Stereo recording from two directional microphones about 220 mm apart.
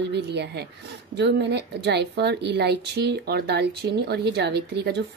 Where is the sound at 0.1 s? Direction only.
50° right (ahead or behind).